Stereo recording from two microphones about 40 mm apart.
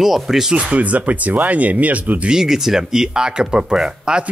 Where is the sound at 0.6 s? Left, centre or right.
Right.